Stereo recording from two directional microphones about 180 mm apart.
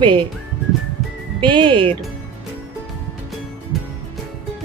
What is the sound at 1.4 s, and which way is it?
Speech, 25° right (ahead or behind).